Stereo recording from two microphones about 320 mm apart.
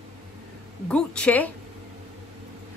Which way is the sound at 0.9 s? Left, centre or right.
Centre.